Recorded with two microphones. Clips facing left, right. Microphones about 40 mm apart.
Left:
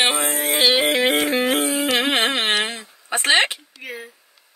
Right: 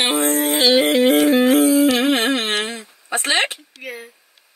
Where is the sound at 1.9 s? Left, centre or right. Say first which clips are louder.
Right 2 dB; left.